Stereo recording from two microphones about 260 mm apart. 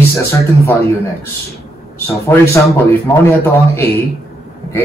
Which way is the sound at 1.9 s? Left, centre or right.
Centre.